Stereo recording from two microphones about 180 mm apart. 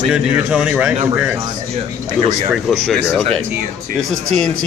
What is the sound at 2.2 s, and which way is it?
Speech, 40° right (ahead or behind).